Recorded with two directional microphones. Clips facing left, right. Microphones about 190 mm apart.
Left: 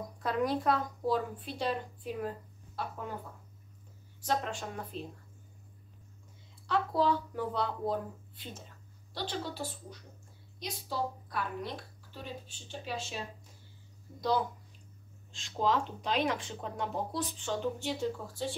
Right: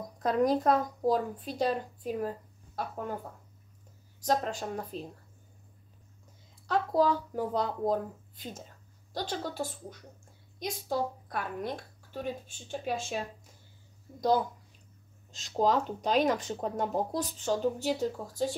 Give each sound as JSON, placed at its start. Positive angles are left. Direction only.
{"t": 0.2, "sound": "a woman's voice", "side_deg": -40}
{"t": 4.2, "sound": "a woman's voice", "side_deg": -40}
{"t": 6.7, "sound": "a woman's voice", "side_deg": -40}
{"t": 15.3, "sound": "a woman's voice", "side_deg": -40}